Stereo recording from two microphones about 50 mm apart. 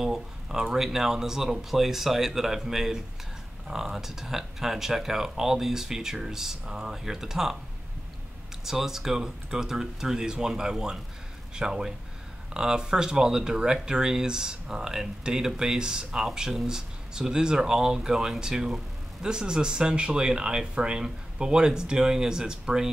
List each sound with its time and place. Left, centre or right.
0.0 s speech: centre
8.6 s speech: centre